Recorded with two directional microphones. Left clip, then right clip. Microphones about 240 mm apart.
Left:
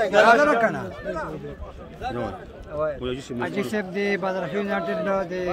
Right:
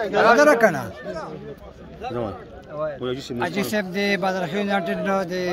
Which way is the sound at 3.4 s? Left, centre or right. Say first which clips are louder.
Right 3 dB; right.